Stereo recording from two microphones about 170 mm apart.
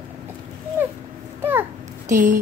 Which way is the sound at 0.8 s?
15° right (ahead or behind).